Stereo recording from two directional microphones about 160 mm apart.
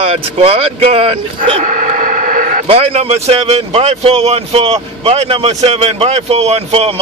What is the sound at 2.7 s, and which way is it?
Speech, 40° right (ahead or behind).